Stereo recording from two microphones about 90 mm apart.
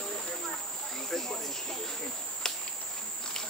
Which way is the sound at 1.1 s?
5° left (ahead or behind).